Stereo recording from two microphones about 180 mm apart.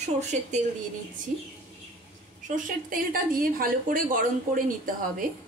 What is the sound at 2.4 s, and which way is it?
Speech, 45° right (ahead or behind).